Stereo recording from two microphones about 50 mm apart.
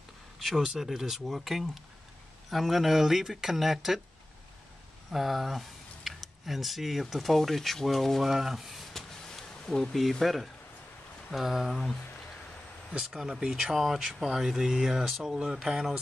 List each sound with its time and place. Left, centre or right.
0.4 s speech: centre
5.1 s speech: centre
8.9 s vehicle: centre
10.2 s speech: centre
13.0 s speech: centre
13.3 s speech: centre